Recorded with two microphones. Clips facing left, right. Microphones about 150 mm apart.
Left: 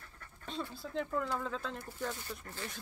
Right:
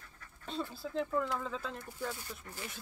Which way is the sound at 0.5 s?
Centre (ahead or behind).